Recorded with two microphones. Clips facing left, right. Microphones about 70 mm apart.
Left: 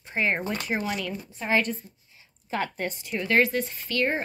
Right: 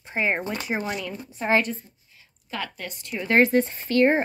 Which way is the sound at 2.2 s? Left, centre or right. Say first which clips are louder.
Left 3 dB; left.